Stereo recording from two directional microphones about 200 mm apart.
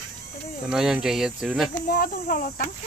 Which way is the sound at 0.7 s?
5° right (ahead or behind).